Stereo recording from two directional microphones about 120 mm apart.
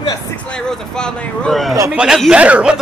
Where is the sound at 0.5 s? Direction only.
5° left (ahead or behind).